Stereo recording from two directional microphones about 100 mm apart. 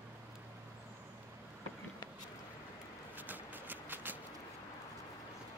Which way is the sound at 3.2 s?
20° right (ahead or behind).